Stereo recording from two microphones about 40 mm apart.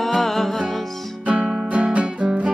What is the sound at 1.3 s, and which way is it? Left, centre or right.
Music, right.